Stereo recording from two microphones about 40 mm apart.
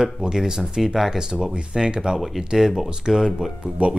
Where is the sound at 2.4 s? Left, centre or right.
Centre.